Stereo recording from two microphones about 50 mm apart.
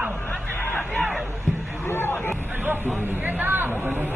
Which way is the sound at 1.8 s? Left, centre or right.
Left.